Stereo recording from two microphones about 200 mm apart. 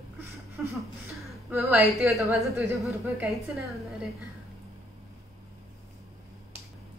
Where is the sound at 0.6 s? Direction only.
Centre (ahead or behind).